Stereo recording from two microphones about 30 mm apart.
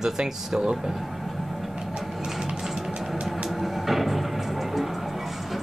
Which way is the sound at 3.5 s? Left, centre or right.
Centre.